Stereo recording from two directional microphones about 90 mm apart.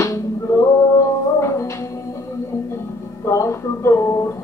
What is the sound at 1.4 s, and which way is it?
Music, 35° left (ahead or behind).